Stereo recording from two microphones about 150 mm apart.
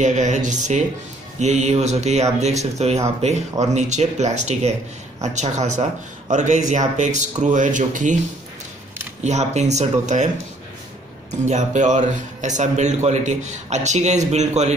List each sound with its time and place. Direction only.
0.0 s a man's voice: 50° right (ahead or behind)
9.2 s a man's voice: 50° right (ahead or behind)
11.4 s a man's voice: 55° right (ahead or behind)